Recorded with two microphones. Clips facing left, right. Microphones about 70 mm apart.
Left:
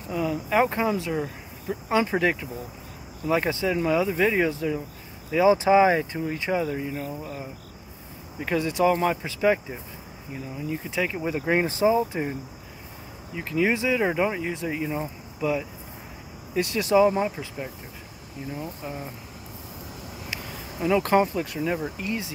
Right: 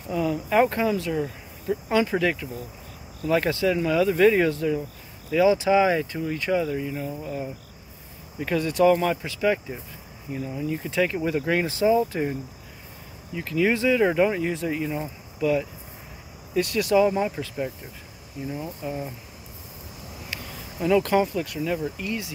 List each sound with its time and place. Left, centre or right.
0.1 s speech: centre
0.7 s speech: centre
5.3 s speech: left
6.1 s speech: centre
6.9 s speech: centre
8.4 s speech: centre
10.3 s speech: centre
11.4 s speech: left
13.4 s speech: centre
16.5 s speech: left
17.0 s speech: centre
18.5 s speech: centre
21.0 s speech: left